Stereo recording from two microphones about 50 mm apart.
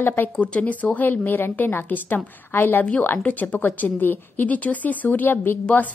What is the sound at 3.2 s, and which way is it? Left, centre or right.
A woman's voice, left.